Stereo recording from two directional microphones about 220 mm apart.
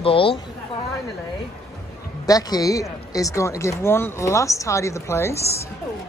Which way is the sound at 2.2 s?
15° left (ahead or behind).